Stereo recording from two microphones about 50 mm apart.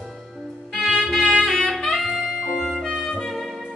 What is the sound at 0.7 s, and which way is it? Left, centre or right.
Music, centre.